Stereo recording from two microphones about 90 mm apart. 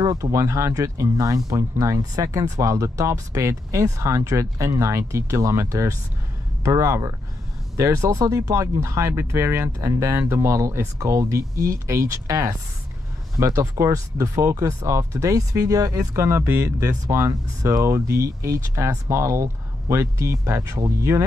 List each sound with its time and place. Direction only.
0.0 s speech: 40° right (ahead or behind)